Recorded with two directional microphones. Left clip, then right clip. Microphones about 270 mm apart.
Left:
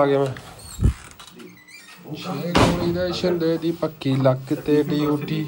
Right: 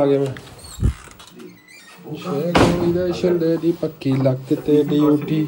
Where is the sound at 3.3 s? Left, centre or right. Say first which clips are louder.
Right 3 dB; left.